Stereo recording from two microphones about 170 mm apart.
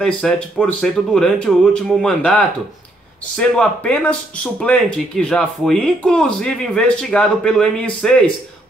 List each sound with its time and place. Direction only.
0.0 s speech: 5° left (ahead or behind)